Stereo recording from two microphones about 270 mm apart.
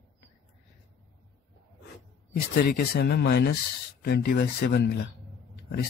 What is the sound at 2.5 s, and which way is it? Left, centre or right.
Speech, left.